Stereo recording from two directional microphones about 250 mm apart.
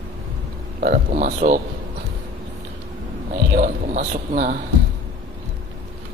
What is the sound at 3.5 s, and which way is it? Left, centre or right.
A man's voice, right.